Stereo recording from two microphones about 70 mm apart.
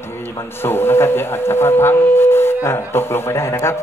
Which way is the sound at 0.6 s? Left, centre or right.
Left.